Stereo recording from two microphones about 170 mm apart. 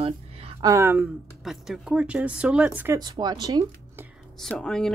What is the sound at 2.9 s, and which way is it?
Speech, 25° right (ahead or behind).